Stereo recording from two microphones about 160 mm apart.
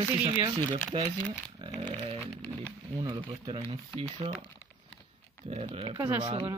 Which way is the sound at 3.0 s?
30° right (ahead or behind).